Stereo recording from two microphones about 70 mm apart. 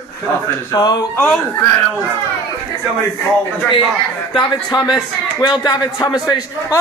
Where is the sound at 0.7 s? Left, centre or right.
Left.